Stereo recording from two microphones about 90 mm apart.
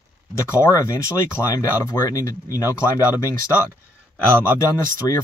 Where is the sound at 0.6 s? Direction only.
35° left (ahead or behind).